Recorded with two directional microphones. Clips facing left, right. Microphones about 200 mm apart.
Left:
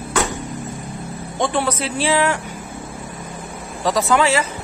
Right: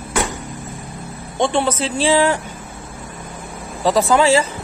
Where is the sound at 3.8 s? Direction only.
30° right (ahead or behind).